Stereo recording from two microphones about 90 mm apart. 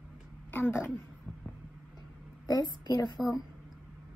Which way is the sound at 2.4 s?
50° left (ahead or behind).